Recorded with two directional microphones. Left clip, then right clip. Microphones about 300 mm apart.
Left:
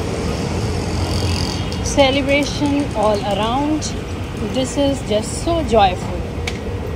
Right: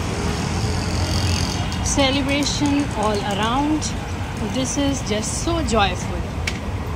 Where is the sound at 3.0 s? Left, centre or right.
Centre.